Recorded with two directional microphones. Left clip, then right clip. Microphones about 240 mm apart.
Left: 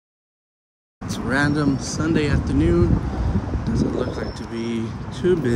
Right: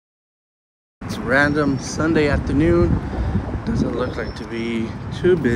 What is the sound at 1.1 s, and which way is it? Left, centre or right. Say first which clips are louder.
Speech: right 4 dB; centre.